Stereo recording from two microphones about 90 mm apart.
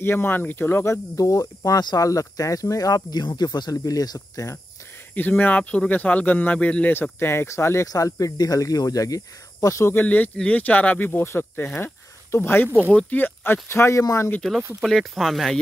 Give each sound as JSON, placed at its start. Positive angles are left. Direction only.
{"t": 0.0, "sound": "speech", "side_deg": 25}
{"t": 1.1, "sound": "speech", "side_deg": 40}
{"t": 5.1, "sound": "speech", "side_deg": 20}
{"t": 7.9, "sound": "speech", "side_deg": 40}
{"t": 10.0, "sound": "speech", "side_deg": 15}
{"t": 11.8, "sound": "a sound", "side_deg": 25}
{"t": 12.9, "sound": "speech", "side_deg": 20}
{"t": 14.8, "sound": "speech", "side_deg": 0}